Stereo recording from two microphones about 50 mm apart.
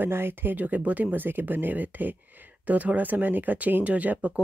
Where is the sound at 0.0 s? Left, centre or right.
Right.